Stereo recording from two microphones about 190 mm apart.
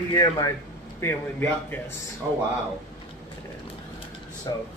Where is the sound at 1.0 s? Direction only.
10° left (ahead or behind).